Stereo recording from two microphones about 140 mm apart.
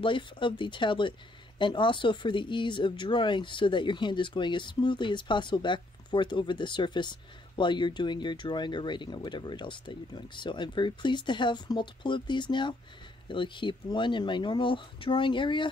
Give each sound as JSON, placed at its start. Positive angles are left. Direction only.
{"t": 0.0, "sound": "speech", "side_deg": 35}